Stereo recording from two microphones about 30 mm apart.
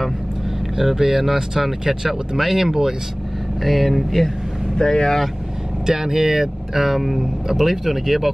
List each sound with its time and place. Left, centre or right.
0.7 s speech: centre
3.6 s speech: centre
4.7 s speech: left
5.9 s speech: centre